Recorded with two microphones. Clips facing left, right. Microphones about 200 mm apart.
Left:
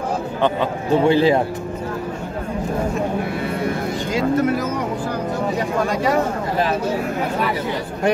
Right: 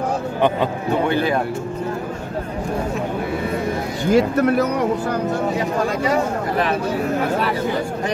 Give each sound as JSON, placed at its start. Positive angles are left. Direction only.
{"t": 1.0, "sound": "speech", "side_deg": 25}
{"t": 4.1, "sound": "speech", "side_deg": -65}